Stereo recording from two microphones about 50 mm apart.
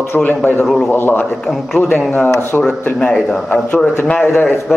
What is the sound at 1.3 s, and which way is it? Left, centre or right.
A man's voice, centre.